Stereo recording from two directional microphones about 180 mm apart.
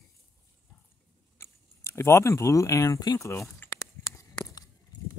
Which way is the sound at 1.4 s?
15° left (ahead or behind).